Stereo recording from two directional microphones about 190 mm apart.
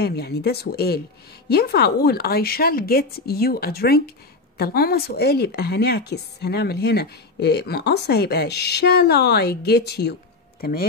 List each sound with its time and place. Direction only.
0.0 s a woman's voice: 60° left (ahead or behind)